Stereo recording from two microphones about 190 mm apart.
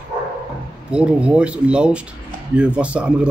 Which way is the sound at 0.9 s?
5° right (ahead or behind).